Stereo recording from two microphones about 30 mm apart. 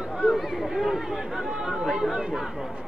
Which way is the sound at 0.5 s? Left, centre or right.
Centre.